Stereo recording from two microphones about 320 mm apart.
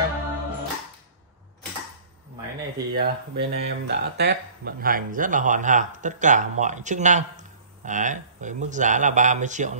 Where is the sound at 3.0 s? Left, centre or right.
Right.